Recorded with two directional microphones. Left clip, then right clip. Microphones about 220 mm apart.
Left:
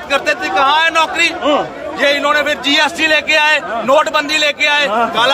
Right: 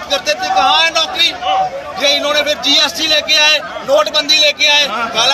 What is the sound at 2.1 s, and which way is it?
Speech, 5° left (ahead or behind).